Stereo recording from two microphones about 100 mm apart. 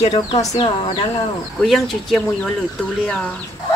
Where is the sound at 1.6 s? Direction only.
Centre (ahead or behind).